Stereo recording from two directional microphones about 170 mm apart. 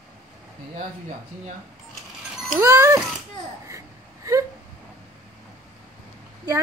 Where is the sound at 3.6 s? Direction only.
20° right (ahead or behind).